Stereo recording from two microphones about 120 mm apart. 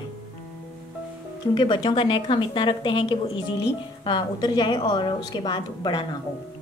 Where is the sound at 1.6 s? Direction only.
40° left (ahead or behind).